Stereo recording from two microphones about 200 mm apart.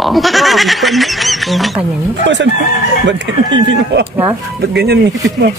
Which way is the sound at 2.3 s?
60° right (ahead or behind).